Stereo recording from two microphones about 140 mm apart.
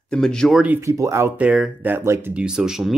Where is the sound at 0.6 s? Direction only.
15° right (ahead or behind).